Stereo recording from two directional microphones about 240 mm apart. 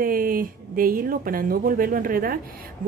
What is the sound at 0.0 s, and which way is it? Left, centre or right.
Speech, right.